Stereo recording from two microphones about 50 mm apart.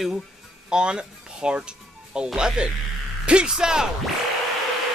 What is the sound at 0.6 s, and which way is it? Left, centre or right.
Speech, centre.